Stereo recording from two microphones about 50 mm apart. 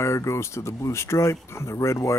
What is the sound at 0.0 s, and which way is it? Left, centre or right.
Speech, left.